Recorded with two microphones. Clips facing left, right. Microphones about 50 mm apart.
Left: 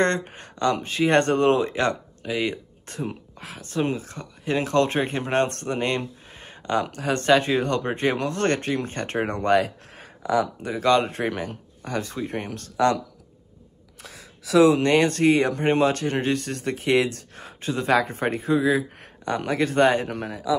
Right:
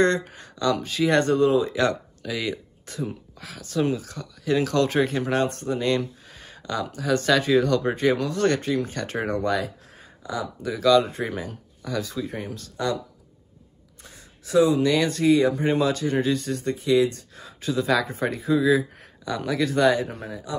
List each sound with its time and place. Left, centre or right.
0.0 s speech: left
1.8 s speech: left
5.5 s speech: left
10.2 s speech: left
10.6 s speech: left
12.7 s speech: left
14.0 s a sound: left
14.8 s speech: left
17.4 s speech: left